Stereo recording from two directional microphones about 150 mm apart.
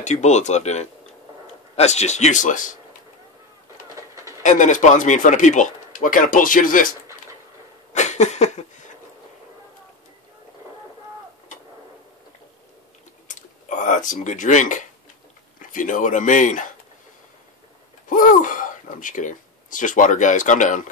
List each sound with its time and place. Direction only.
0.0 s speech: 50° left (ahead or behind)
3.9 s train: 20° right (ahead or behind)
4.4 s speech: 55° left (ahead or behind)
7.9 s a sound: 50° left (ahead or behind)
13.3 s speech: 55° left (ahead or behind)
18.1 s speech: 65° left (ahead or behind)